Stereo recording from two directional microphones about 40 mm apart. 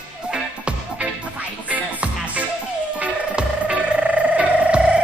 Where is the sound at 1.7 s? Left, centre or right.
Right.